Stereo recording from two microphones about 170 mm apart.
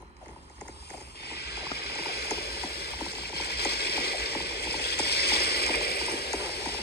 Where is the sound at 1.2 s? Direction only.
70° left (ahead or behind).